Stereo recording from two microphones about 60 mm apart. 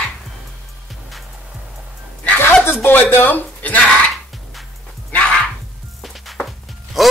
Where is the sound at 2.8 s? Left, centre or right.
Left.